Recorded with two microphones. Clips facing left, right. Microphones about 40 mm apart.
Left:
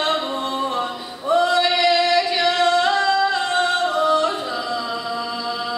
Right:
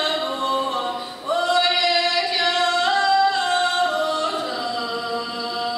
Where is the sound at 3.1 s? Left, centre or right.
Centre.